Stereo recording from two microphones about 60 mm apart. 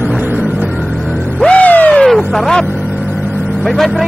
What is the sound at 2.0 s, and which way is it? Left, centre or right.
Vehicle, centre.